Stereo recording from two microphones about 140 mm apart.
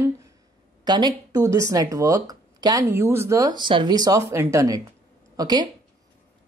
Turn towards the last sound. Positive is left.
turn(degrees=-30)  # may be behind; listen again after turning